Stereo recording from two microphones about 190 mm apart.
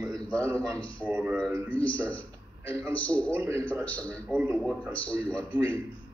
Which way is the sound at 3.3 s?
15° right (ahead or behind).